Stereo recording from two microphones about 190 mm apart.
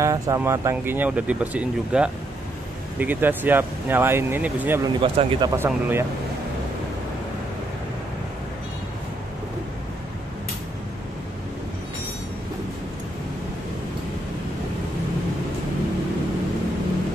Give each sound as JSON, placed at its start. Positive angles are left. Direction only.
{"t": 0.0, "sound": "speech", "side_deg": -15}
{"t": 5.0, "sound": "speech", "side_deg": -25}
{"t": 5.6, "sound": "speech", "side_deg": -10}